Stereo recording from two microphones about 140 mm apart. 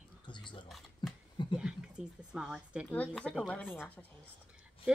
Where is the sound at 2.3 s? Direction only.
5° right (ahead or behind).